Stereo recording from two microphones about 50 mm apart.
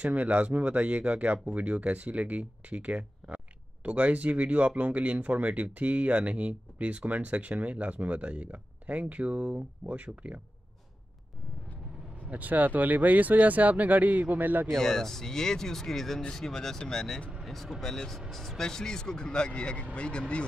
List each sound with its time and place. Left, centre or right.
0.0 s speech: right
12.3 s speech: right
14.7 s speech: centre